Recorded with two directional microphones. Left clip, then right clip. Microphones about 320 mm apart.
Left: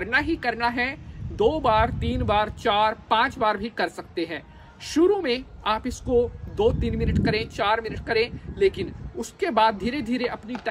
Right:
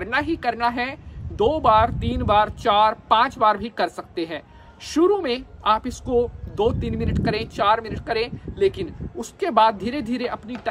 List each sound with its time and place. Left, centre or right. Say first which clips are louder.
0.0 s a woman's voice: right 1 dB; centre